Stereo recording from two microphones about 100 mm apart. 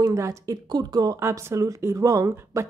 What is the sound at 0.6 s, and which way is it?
Speech, 45° right (ahead or behind).